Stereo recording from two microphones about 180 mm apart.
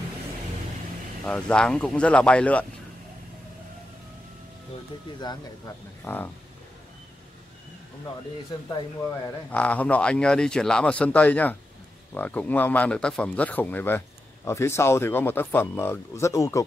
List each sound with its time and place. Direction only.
1.2 s speech: 5° left (ahead or behind)
6.0 s speech: 10° left (ahead or behind)
9.5 s speech: 10° left (ahead or behind)